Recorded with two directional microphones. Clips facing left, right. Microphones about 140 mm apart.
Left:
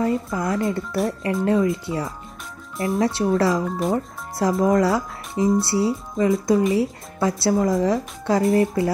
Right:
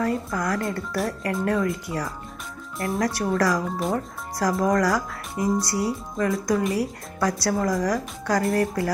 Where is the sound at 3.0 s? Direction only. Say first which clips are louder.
Left 3 dB; 25° left (ahead or behind).